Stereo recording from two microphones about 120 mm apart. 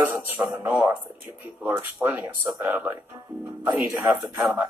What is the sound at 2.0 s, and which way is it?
Speech, 15° right (ahead or behind).